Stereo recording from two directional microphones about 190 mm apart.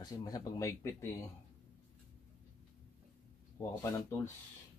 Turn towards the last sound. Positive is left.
turn(degrees=15)  # may be behind; listen again after turning